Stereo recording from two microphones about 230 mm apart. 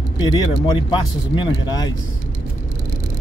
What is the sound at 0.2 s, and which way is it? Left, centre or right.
Speech, centre.